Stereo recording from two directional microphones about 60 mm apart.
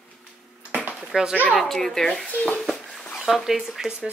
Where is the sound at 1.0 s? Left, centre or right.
Centre.